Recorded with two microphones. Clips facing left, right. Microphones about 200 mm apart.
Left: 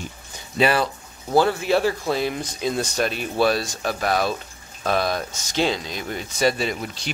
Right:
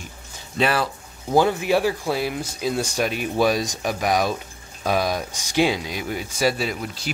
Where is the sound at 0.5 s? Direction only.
Centre (ahead or behind).